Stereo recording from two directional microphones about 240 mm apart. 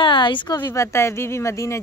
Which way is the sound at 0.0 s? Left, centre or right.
Centre.